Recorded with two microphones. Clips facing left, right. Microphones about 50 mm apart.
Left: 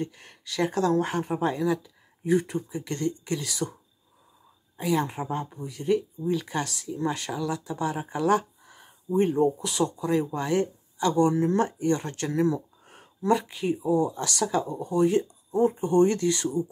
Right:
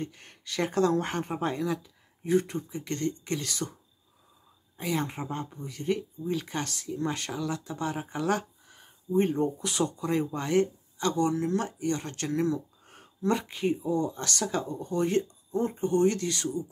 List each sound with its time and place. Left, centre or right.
0.0 s speech: centre
4.7 s speech: centre
9.6 s speech: centre; by 12.0 s left
12.0 s speech: centre
13.4 s speech: centre
13.7 s speech: centre
15.9 s speech: left